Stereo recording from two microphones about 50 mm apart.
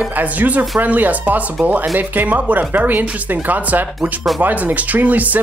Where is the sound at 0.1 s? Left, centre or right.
Right.